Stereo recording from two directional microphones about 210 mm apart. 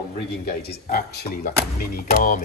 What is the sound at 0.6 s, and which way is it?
A man's voice, 45° left (ahead or behind).